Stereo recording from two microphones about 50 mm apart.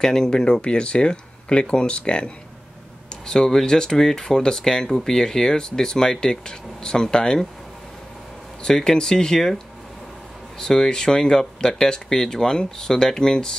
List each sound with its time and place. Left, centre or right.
0.0 s speech: centre
8.6 s speech: centre
10.6 s speech: centre